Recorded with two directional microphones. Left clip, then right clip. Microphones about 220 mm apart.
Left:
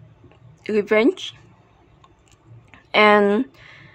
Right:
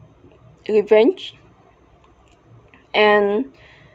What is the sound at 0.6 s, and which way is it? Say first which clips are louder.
Speech: right 4 dB; 30° left (ahead or behind).